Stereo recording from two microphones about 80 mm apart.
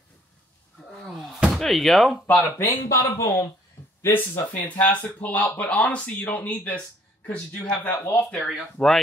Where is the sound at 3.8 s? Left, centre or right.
Left.